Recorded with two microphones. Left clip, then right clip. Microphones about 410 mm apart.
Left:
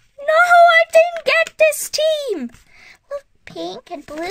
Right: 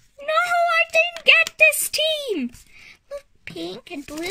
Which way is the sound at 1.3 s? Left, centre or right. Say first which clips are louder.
Even; centre.